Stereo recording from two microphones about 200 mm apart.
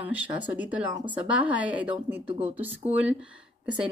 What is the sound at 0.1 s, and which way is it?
A woman's voice, 5° right (ahead or behind).